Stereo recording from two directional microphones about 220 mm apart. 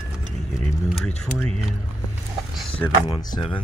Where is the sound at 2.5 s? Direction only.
5° left (ahead or behind).